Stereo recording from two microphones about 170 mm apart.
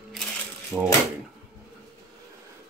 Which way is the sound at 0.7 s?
10° right (ahead or behind).